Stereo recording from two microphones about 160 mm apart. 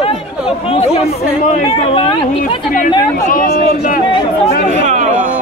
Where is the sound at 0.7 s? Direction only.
40° left (ahead or behind).